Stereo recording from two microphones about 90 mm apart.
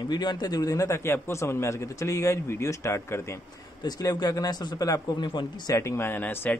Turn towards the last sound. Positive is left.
turn(degrees=20)  # may be behind; listen again after turning